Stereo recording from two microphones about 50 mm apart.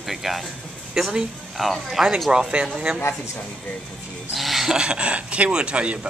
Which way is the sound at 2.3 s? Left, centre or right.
Centre.